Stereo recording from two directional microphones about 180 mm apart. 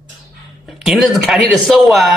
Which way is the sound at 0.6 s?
Centre (ahead or behind).